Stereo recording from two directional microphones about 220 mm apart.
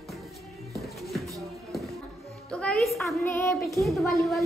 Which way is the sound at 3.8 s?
Centre (ahead or behind).